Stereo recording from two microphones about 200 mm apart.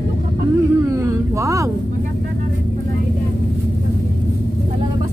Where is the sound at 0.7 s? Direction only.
15° right (ahead or behind).